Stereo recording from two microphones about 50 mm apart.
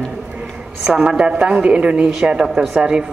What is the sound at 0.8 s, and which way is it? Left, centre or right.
A woman's voice, centre.